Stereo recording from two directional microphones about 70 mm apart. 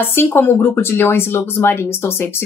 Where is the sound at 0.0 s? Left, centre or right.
Left.